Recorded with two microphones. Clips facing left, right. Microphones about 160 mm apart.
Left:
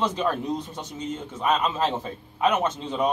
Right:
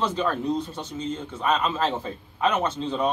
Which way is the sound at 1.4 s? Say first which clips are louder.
Even; 15° left (ahead or behind).